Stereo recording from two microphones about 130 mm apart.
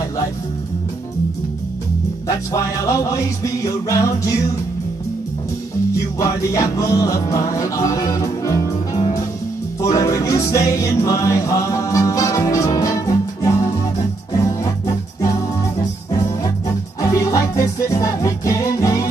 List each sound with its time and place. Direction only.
2.2 s music: 25° left (ahead or behind)
6.1 s music: 25° left (ahead or behind)
9.8 s music: 25° left (ahead or behind)